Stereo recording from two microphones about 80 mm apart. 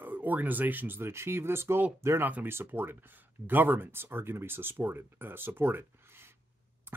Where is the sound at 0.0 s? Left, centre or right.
Right.